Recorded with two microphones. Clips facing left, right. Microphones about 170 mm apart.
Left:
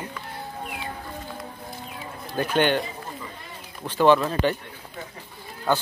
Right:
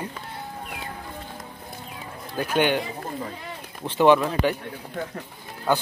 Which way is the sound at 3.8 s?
20° right (ahead or behind).